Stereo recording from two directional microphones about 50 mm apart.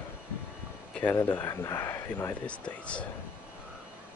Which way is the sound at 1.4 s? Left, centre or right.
Left.